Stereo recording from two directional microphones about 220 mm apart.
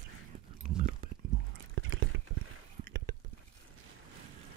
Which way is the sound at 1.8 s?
60° right (ahead or behind).